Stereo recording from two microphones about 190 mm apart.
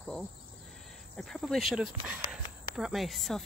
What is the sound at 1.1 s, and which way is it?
Speech, centre (ahead or behind).